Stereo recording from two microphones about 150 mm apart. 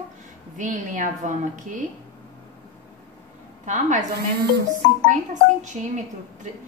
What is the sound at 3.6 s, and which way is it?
Speech, 55° right (ahead or behind).